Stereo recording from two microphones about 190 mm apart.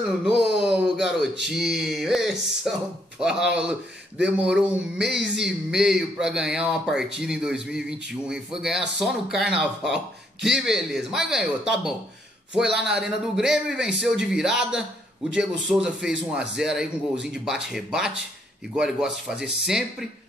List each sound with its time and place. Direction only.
0.2 s speech: centre (ahead or behind)
5.0 s a sound: 65° right (ahead or behind)
5.3 s speech: 5° right (ahead or behind)